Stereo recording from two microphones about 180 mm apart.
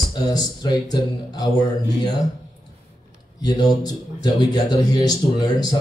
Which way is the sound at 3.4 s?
25° left (ahead or behind).